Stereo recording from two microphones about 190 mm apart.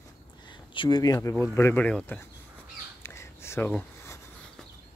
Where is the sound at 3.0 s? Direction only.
15° left (ahead or behind).